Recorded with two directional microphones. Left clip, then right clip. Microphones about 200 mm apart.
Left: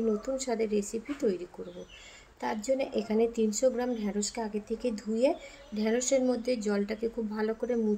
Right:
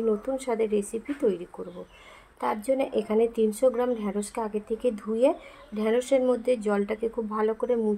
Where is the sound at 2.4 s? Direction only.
5° right (ahead or behind).